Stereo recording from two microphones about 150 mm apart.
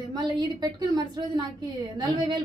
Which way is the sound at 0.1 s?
30° right (ahead or behind).